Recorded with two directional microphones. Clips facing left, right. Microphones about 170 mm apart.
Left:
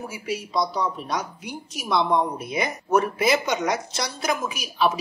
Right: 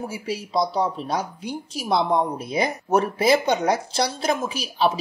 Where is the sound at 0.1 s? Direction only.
30° right (ahead or behind).